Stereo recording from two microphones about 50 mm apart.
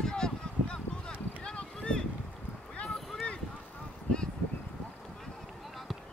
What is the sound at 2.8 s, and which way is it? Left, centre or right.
Boat, centre.